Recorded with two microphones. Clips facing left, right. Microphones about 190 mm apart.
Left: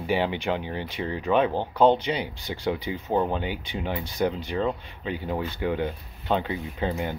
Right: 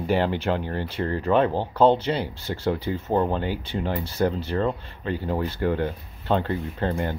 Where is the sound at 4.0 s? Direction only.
15° left (ahead or behind).